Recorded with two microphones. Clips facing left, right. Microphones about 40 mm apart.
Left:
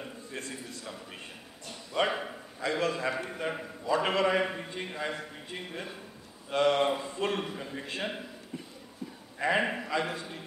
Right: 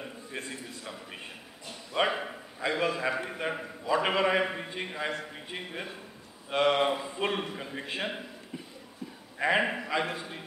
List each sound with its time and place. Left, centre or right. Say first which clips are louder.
0.0 s a sound: right 1 dB; centre
2.0 s a man's voice: right 1 dB; centre
9.4 s a man's voice: right 1 dB; centre